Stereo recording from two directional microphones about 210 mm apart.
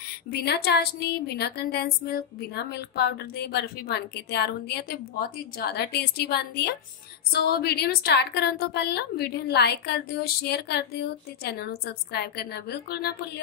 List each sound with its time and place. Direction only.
0.3 s speech: 50° left (ahead or behind)